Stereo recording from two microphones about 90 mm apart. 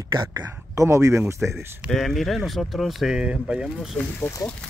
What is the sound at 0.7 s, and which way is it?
Speech, 35° right (ahead or behind).